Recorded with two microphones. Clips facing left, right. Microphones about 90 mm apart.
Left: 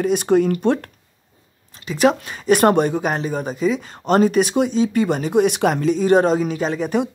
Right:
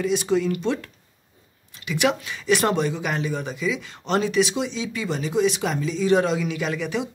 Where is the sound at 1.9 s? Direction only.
40° left (ahead or behind).